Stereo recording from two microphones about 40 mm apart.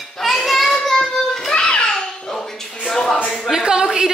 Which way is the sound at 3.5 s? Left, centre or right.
Centre.